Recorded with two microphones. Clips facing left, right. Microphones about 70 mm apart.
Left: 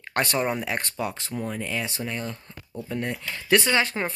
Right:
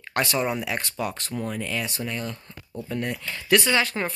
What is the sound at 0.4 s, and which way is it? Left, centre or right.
Speech, left.